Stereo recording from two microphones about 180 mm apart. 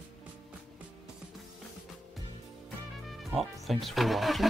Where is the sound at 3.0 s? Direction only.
Centre (ahead or behind).